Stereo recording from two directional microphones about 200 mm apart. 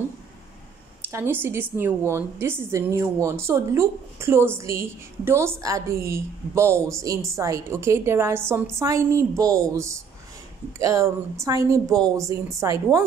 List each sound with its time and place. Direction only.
1.1 s a woman's voice: 10° right (ahead or behind)